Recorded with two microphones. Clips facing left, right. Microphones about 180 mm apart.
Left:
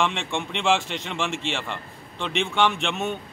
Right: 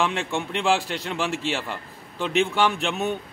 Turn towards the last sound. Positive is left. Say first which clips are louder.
# right 1 dB
turn(degrees=0)  # may be behind; listen again after turning